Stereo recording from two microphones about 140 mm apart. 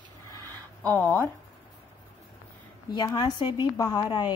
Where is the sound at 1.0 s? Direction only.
15° left (ahead or behind).